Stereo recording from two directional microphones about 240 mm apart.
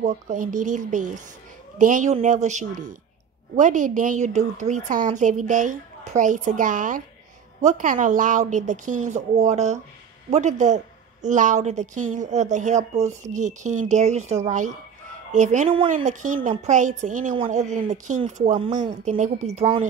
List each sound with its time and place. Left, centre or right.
0.0 s a woman's voice: right